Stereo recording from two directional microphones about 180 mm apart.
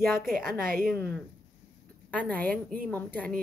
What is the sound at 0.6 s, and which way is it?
Speech, 55° right (ahead or behind).